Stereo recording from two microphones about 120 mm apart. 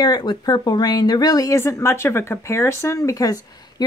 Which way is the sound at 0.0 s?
35° left (ahead or behind).